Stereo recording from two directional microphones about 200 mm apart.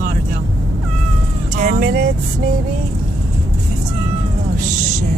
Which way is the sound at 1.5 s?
40° right (ahead or behind).